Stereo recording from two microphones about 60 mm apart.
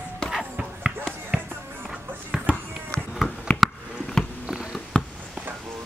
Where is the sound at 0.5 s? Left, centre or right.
Centre.